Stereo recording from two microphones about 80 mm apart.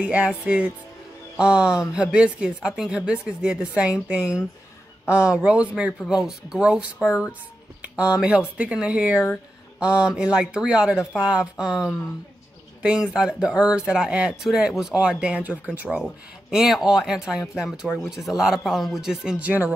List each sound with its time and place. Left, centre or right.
0.0 s speech: centre
5.0 s speech: left
5.3 s speech: centre
16.0 s speech: centre
19.4 s speech: right